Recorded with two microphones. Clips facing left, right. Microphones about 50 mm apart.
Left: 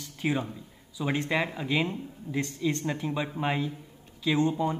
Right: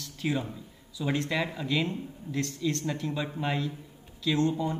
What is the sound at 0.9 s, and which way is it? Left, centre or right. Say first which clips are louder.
Speech: left 1 dB; centre.